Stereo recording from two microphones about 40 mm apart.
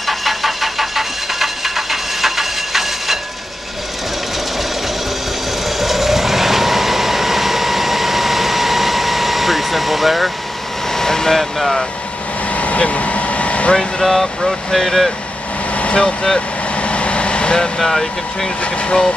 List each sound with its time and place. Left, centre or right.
0.0 s engine: centre
5.7 s vehicle: centre
10.9 s vehicle: centre
12.5 s vehicle: left
13.7 s speech: centre
15.7 s vehicle: left
16.0 s speech: left
16.3 s vehicle: left
17.6 s speech: centre
18.6 s speech: left